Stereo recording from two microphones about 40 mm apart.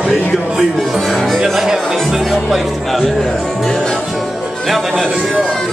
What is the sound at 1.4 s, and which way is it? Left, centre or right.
Speech, centre.